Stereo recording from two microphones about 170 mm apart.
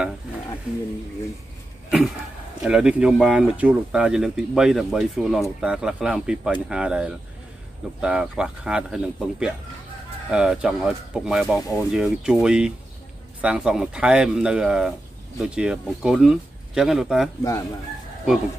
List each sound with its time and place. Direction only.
2.6 s speech: 5° right (ahead or behind)
17.4 s speech: 20° left (ahead or behind)